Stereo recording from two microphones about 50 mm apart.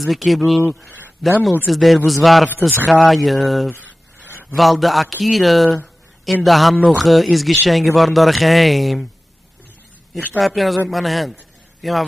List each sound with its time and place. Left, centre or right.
0.0 s speech: centre
3.7 s a sound: left
4.6 s speech: centre
10.3 s a man's voice: centre